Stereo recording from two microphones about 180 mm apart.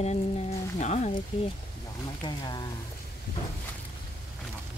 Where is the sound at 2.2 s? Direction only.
25° left (ahead or behind).